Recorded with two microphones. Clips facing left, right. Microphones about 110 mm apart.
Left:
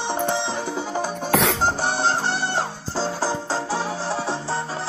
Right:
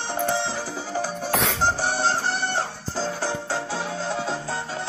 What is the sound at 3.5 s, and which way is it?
Music, 90° left.